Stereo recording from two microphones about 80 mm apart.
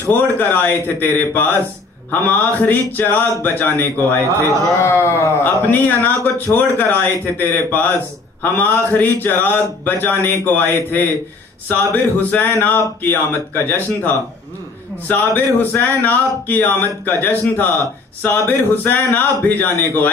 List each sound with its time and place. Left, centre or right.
0.0 s speech: left